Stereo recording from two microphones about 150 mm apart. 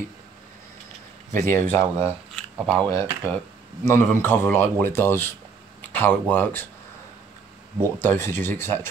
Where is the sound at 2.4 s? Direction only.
5° left (ahead or behind).